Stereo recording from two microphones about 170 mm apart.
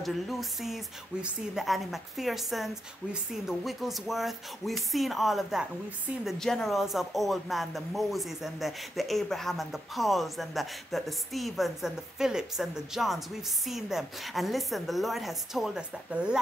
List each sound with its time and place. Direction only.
0.0 s a woman's voice: centre (ahead or behind)